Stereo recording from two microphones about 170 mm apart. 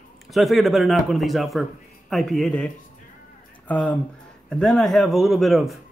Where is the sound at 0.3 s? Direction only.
Centre (ahead or behind).